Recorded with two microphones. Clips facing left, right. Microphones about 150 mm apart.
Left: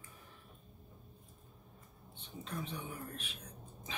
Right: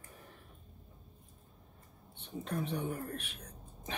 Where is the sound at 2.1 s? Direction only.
60° right (ahead or behind).